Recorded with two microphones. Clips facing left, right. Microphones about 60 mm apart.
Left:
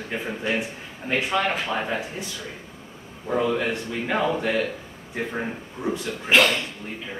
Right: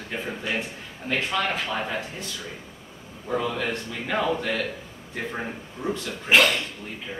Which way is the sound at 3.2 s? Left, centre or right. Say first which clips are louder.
Left 3 dB; centre.